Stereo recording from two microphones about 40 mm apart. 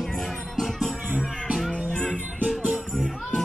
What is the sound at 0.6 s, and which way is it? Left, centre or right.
Music, centre.